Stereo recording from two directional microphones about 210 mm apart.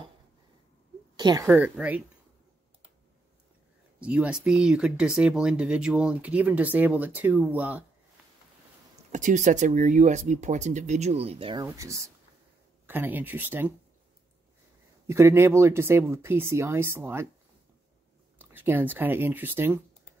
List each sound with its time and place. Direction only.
1.1 s speech: 20° right (ahead or behind)
4.0 s speech: 5° right (ahead or behind)
9.1 s speech: 35° right (ahead or behind)
11.6 s speech: 15° right (ahead or behind)
15.0 s speech: 15° right (ahead or behind)
18.4 s speech: 10° right (ahead or behind)